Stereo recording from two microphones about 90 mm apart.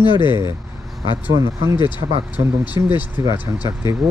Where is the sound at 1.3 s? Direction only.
35° right (ahead or behind).